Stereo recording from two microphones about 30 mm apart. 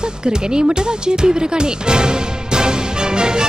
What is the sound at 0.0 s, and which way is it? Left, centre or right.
A man's voice, right.